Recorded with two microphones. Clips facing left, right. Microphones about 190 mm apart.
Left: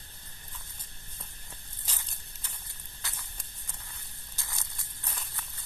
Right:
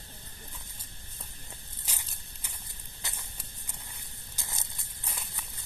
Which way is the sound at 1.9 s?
10° right (ahead or behind).